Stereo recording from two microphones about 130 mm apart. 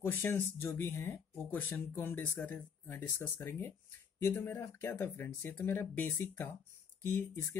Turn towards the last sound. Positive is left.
turn(degrees=20)  # may be behind; listen again after turning